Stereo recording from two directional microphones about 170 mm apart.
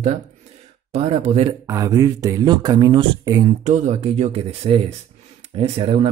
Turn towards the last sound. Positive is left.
turn(degrees=-35)  # may be behind; listen again after turning